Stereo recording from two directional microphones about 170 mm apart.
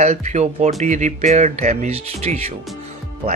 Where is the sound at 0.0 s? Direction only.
40° right (ahead or behind).